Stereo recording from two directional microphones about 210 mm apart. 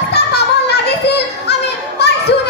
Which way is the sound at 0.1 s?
50° left (ahead or behind).